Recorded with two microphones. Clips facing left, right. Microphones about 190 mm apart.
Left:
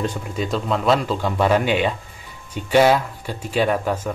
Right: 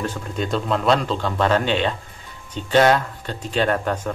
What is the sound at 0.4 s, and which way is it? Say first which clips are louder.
Speech: even; centre (ahead or behind).